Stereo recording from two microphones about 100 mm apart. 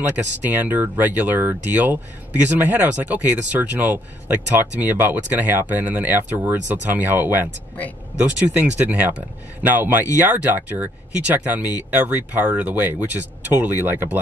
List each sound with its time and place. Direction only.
0.1 s speech: 15° right (ahead or behind)